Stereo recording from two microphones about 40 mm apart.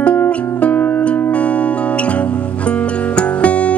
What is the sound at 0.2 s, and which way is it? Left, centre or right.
Music, left.